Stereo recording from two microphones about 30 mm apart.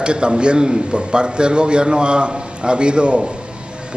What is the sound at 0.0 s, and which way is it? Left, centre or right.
A man's voice, right.